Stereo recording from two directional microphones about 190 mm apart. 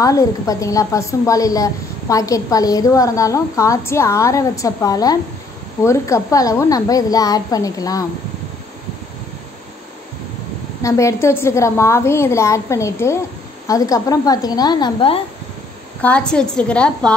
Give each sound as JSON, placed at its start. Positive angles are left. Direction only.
{"t": 0.0, "sound": "a woman's voice", "side_deg": 20}
{"t": 10.8, "sound": "a woman's voice", "side_deg": 15}
{"t": 16.0, "sound": "a woman's voice", "side_deg": 5}